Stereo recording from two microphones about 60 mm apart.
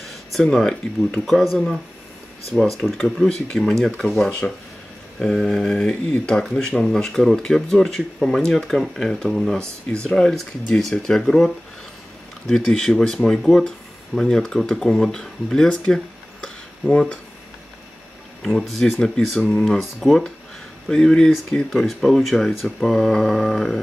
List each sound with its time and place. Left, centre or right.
0.0 s speech: centre
2.8 s speech: centre
9.3 s speech: centre
9.6 s speech: centre
18.4 s speech: centre
21.6 s speech: centre